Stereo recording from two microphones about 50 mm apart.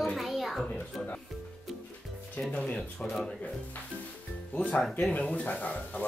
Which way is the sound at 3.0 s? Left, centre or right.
Centre.